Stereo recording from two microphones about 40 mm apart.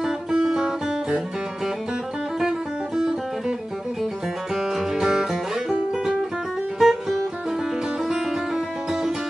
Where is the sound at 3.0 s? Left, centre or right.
Centre.